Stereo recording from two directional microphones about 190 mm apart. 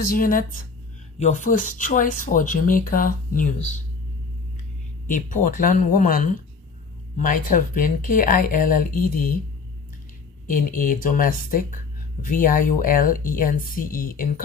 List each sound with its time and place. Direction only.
0.0 s speech: 50° left (ahead or behind)
5.0 s speech: 45° left (ahead or behind)
10.4 s speech: 45° left (ahead or behind)